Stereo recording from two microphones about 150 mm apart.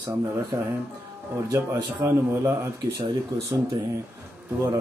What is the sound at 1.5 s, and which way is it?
Speech, 25° right (ahead or behind).